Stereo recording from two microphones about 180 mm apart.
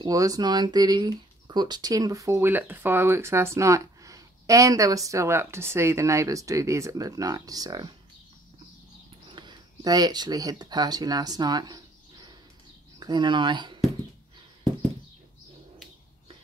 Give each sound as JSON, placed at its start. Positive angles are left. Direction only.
{"t": 0.0, "sound": "speech", "side_deg": -20}
{"t": 9.3, "sound": "speech", "side_deg": -25}